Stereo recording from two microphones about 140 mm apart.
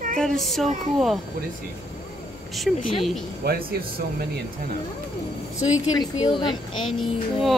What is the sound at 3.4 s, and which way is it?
Speech, 90° right.